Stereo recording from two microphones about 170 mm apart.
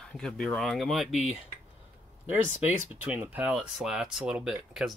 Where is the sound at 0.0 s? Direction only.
5° left (ahead or behind).